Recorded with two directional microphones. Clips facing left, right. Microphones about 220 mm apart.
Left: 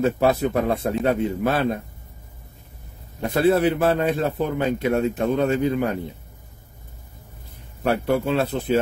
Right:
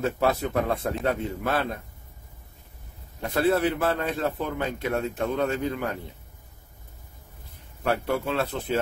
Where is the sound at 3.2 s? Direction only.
20° left (ahead or behind).